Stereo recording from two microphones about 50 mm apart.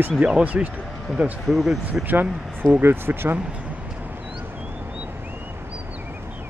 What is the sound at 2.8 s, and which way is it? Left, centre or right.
Speech, right.